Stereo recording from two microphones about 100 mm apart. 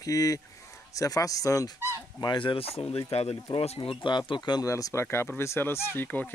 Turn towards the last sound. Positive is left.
turn(degrees=15)  # may be behind; listen again after turning